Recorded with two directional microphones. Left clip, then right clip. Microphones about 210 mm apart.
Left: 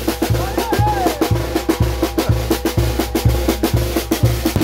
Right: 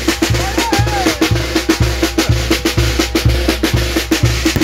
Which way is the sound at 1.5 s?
35° left (ahead or behind).